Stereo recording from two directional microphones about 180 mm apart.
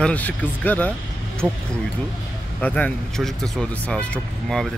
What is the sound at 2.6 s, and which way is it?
Speech, 5° left (ahead or behind).